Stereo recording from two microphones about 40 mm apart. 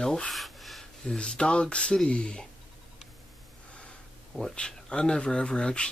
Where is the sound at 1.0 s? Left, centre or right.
Centre.